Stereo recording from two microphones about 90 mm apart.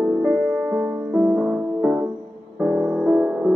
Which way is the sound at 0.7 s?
10° right (ahead or behind).